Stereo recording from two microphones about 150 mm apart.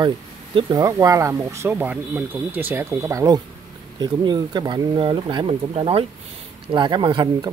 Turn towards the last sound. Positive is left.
turn(degrees=-30)  # may be behind; listen again after turning